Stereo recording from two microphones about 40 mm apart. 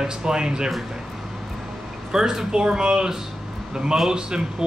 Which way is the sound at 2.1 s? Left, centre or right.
Centre.